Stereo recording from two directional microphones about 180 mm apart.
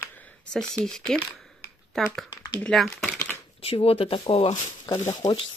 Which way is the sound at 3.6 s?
30° left (ahead or behind).